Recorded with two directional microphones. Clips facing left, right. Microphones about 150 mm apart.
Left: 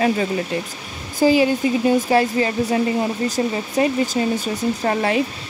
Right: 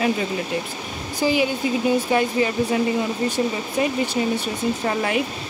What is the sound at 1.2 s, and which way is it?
Speech, 45° left (ahead or behind).